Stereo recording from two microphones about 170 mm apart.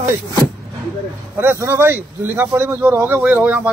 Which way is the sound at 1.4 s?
15° right (ahead or behind).